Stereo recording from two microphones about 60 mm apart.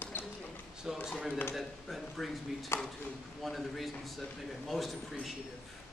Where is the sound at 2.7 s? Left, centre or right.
Left.